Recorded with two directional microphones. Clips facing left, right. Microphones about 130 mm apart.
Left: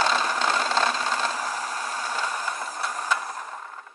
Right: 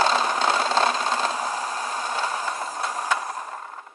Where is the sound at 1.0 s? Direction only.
25° right (ahead or behind).